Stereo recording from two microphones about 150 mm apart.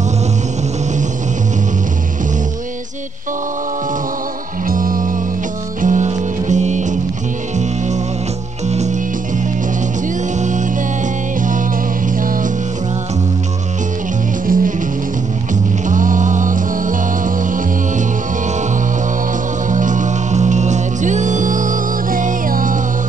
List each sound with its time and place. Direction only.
4.6 s music: 65° right (ahead or behind); by 8.9 s 50° right (ahead or behind)
10.4 s music: 55° right (ahead or behind)
12.1 s music: 65° right (ahead or behind)
14.4 s music: 70° right (ahead or behind)
15.9 s music: 60° right (ahead or behind)
19.7 s music: 55° right (ahead or behind)